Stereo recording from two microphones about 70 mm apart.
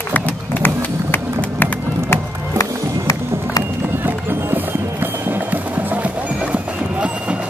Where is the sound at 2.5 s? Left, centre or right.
Left.